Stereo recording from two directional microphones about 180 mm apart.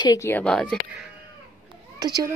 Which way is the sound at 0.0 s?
15° left (ahead or behind).